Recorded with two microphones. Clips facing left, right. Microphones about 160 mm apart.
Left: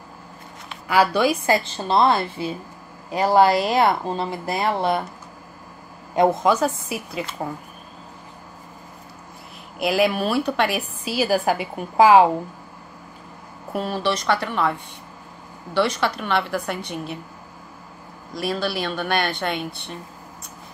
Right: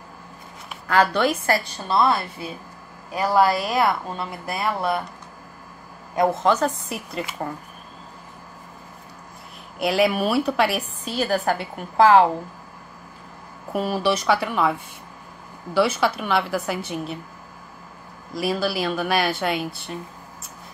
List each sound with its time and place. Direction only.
0.8 s a woman's voice: 10° left (ahead or behind)
1.7 s speech: 25° left (ahead or behind)
6.1 s speech: 25° left (ahead or behind)
6.4 s a woman's voice: 10° left (ahead or behind)
9.8 s a woman's voice: centre (ahead or behind)
13.7 s a woman's voice: 5° right (ahead or behind)
18.3 s a woman's voice: 5° right (ahead or behind)